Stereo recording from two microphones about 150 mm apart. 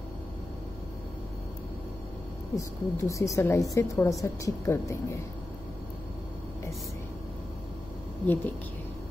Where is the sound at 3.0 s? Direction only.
20° left (ahead or behind).